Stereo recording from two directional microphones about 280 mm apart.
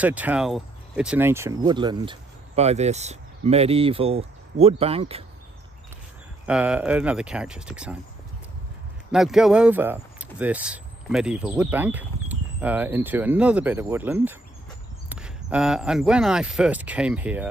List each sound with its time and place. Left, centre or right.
0.0 s speech: centre; by 5.2 s right
6.4 s speech: centre
9.1 s speech: centre